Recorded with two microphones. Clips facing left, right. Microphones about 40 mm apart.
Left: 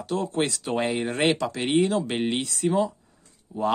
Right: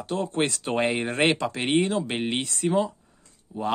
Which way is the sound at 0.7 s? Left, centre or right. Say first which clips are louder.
Right 1 dB; centre.